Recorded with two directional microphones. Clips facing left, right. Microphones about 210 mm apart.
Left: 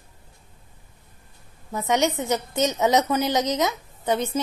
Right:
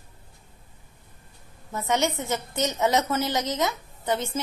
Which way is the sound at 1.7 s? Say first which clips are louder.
Left 3 dB; 15° left (ahead or behind).